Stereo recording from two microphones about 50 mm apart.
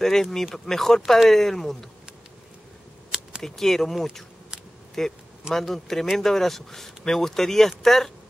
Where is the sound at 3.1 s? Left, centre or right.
Centre.